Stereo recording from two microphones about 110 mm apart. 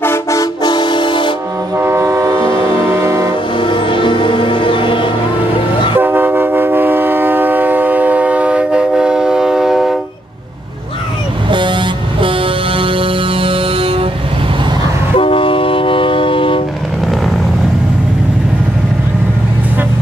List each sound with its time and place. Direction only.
0.0 s music: 25° left (ahead or behind)
0.7 s music: 45° left (ahead or behind)
1.8 s train: 25° right (ahead or behind)
3.5 s music: 50° left (ahead or behind)
5.9 s train: 20° right (ahead or behind); by 9.9 s centre (ahead or behind)
12.2 s music: 55° right (ahead or behind)
15.1 s train: 55° left (ahead or behind)